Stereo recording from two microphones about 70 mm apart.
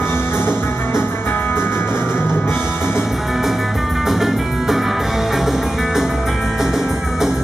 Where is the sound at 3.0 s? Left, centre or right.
Centre.